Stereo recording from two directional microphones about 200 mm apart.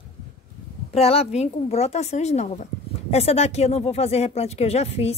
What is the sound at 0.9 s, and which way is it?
A woman's voice, 30° left (ahead or behind).